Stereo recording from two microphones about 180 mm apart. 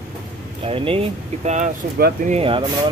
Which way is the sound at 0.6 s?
30° right (ahead or behind).